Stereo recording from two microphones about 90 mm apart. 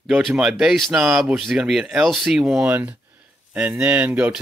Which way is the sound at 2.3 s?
10° right (ahead or behind).